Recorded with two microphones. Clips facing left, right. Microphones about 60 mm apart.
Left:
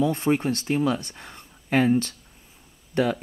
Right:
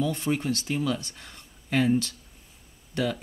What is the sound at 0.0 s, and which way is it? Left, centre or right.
Speech, left.